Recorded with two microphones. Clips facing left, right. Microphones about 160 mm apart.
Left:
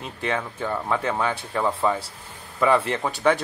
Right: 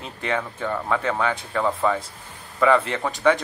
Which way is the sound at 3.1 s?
30° left (ahead or behind).